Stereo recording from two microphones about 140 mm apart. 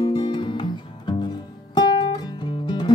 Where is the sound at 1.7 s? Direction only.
30° left (ahead or behind).